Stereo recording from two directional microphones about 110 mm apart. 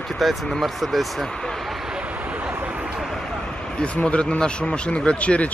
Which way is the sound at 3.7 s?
10° left (ahead or behind).